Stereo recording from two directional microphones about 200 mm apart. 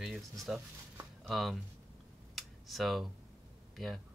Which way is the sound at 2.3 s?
Centre (ahead or behind).